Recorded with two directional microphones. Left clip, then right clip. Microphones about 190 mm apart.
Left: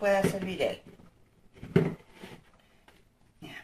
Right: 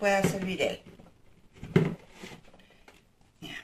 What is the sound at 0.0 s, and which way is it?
Speech, 10° right (ahead or behind).